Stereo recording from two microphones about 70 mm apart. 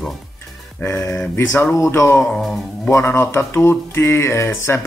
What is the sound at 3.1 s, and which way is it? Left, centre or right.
Speech, left.